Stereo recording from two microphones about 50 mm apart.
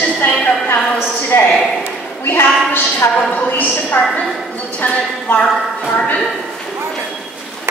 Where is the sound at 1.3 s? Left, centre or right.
Left.